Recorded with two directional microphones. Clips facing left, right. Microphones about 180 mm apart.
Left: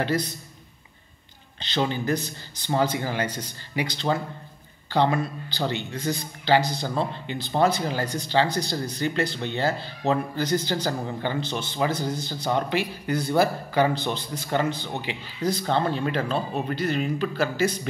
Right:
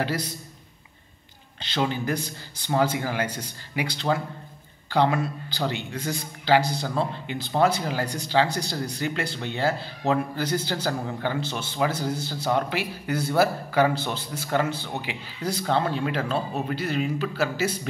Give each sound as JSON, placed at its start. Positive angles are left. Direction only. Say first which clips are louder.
{"t": 0.0, "sound": "speech", "louder": "left 2 dB", "side_deg": -10}
{"t": 1.6, "sound": "speech", "louder": "even", "side_deg": -10}